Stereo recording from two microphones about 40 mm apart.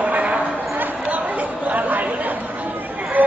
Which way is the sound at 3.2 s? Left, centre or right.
Right.